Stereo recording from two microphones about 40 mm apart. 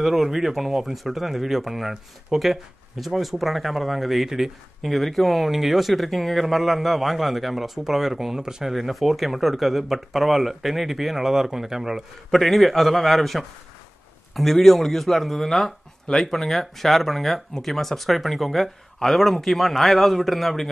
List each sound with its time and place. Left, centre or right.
0.0 s speech: centre
8.7 s speech: centre
12.3 s speech: centre